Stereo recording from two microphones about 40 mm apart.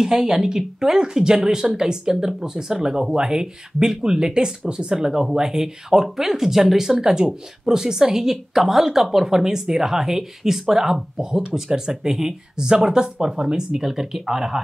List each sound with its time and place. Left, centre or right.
0.0 s speech: centre